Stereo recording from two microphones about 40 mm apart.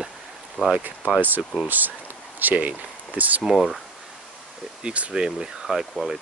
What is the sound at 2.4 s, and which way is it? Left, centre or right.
Speech, right.